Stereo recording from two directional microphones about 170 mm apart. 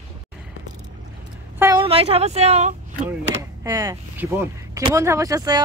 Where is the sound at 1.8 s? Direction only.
35° right (ahead or behind).